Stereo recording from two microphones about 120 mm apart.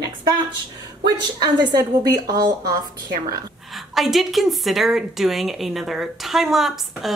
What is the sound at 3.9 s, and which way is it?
A woman's voice, centre (ahead or behind).